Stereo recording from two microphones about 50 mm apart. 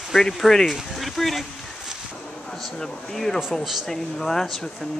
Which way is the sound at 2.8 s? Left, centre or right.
Centre.